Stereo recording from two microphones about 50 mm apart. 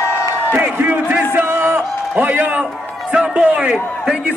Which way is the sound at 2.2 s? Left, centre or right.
Right.